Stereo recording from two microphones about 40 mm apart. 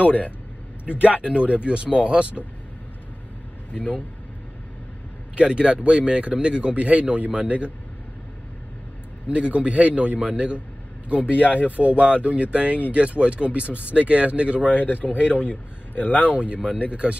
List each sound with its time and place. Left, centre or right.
0.0 s speech: left
0.9 s speech: right
3.7 s speech: left
5.3 s speech: right
9.3 s speech: right
11.2 s speech: left
11.7 s speech: right
14.7 s speech: left
16.3 s speech: right